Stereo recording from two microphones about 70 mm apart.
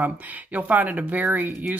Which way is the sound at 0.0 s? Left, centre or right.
Right.